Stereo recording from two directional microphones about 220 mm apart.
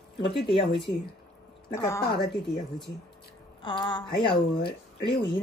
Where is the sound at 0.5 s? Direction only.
25° left (ahead or behind).